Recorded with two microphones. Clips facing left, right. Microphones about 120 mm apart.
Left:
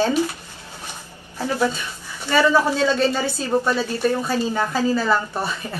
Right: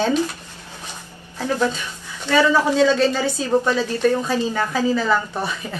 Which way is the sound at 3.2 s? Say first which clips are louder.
Right 2 dB; 15° right (ahead or behind).